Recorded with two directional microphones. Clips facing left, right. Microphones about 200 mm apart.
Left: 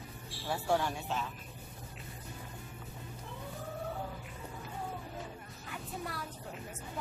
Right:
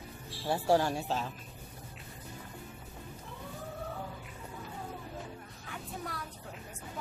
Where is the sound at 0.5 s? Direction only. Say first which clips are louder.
Right 4 dB; 35° right (ahead or behind).